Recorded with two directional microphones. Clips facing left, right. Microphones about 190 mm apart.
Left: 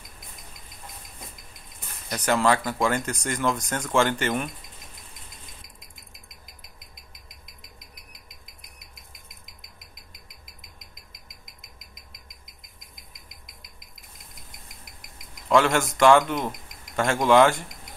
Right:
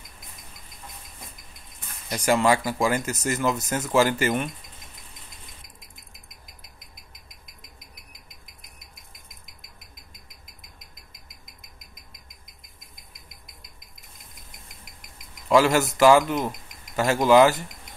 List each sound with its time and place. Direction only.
2.0 s speech: 10° right (ahead or behind)
15.4 s speech: 5° right (ahead or behind)